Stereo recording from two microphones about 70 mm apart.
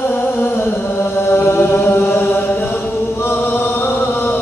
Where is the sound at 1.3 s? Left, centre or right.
Left.